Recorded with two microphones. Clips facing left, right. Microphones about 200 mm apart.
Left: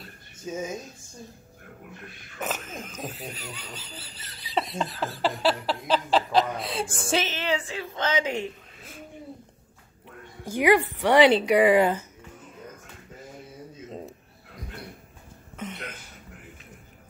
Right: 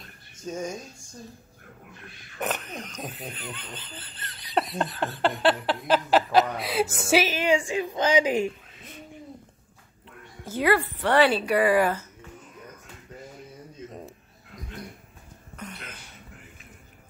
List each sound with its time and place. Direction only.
0.0 s a sound: 5° left (ahead or behind)
2.4 s speech: centre (ahead or behind)
10.4 s speech: 15° left (ahead or behind)
15.5 s throat clearing: 20° left (ahead or behind)